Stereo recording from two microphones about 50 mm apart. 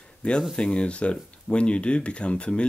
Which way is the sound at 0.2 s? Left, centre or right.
Left.